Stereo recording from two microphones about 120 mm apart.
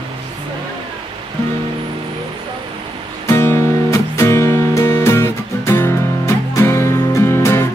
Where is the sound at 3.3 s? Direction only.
20° left (ahead or behind).